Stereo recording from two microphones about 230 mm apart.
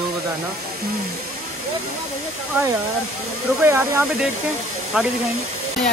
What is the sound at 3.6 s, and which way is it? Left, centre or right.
Speech, centre.